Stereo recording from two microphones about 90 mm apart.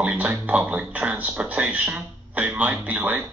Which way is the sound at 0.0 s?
15° right (ahead or behind).